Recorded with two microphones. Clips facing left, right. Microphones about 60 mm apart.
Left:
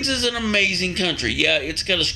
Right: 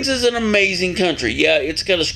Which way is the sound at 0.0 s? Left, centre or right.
Centre.